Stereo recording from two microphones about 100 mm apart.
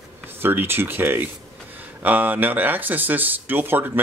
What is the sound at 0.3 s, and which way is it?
Speech, 20° right (ahead or behind).